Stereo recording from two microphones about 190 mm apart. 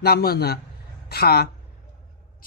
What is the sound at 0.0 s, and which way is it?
A man's voice, 55° left (ahead or behind).